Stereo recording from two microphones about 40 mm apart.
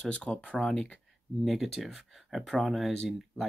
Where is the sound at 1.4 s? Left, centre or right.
Centre.